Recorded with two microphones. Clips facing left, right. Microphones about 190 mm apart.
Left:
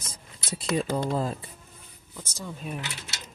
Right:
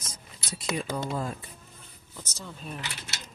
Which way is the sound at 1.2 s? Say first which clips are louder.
Left 4 dB; 35° left (ahead or behind).